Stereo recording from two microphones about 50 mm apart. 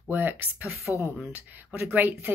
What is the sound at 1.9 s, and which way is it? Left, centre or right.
Speech, right.